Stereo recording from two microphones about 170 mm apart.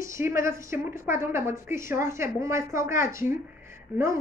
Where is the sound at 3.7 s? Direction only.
15° right (ahead or behind).